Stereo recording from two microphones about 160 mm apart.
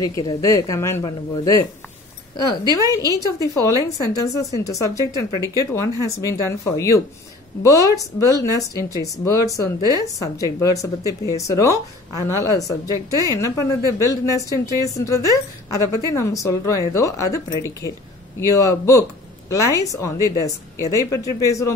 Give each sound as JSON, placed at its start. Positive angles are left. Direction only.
{"t": 0.0, "sound": "speech", "side_deg": 25}
{"t": 2.7, "sound": "speech", "side_deg": 20}
{"t": 18.6, "sound": "speech", "side_deg": 20}